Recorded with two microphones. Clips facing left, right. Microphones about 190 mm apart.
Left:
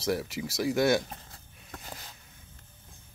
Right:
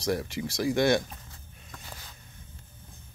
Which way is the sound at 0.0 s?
5° left (ahead or behind).